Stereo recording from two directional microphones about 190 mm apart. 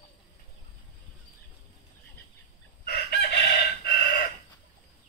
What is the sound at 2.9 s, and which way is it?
Chicken, 60° left (ahead or behind).